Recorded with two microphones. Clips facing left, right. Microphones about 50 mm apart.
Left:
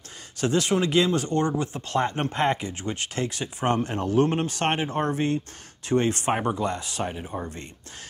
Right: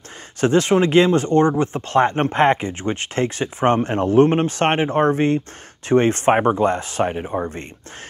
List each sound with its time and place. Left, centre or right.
0.4 s speech: right